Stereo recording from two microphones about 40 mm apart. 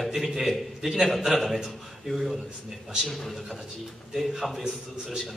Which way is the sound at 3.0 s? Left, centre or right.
Centre.